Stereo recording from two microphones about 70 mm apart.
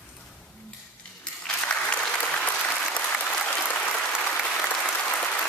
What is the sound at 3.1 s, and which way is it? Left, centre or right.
Applause, centre.